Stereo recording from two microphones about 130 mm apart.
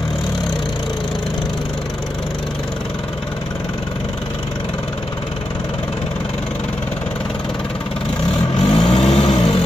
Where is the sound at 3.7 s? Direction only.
40° left (ahead or behind).